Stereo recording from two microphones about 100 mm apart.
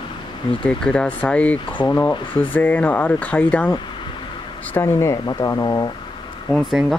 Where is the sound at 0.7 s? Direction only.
10° left (ahead or behind).